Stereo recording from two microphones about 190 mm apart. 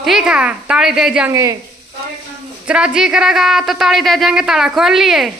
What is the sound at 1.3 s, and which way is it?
Speech, 15° right (ahead or behind).